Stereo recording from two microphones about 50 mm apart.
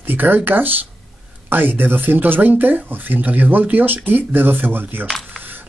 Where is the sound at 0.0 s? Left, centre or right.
Right.